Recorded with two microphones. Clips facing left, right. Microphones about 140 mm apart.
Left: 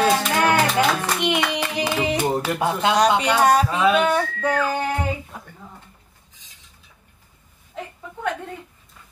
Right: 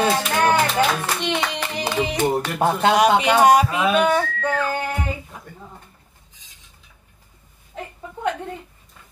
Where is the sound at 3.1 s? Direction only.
20° right (ahead or behind); by 4.2 s 5° right (ahead or behind).